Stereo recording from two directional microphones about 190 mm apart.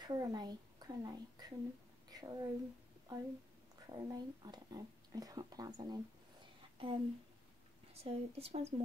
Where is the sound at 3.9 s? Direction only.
20° right (ahead or behind).